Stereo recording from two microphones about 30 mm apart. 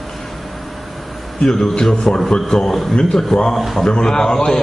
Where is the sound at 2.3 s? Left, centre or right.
Left.